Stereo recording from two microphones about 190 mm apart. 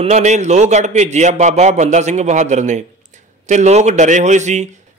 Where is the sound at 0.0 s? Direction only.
35° right (ahead or behind).